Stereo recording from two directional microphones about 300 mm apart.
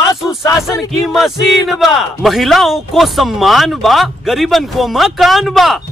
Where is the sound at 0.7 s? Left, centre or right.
Centre.